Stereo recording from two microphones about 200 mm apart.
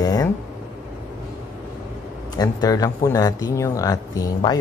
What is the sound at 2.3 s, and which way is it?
Speech, 20° left (ahead or behind).